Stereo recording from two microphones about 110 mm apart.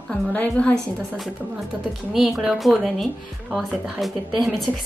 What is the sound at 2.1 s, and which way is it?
A woman's voice, centre (ahead or behind).